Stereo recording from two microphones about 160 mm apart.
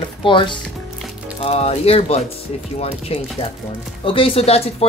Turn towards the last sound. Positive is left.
turn(degrees=40)  # may be behind; listen again after turning